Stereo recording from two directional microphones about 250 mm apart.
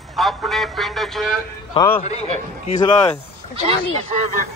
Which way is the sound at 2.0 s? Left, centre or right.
Left.